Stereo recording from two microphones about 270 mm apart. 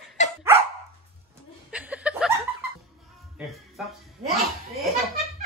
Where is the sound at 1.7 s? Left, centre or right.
Centre.